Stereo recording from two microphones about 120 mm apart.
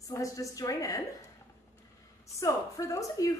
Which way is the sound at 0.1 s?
30° left (ahead or behind).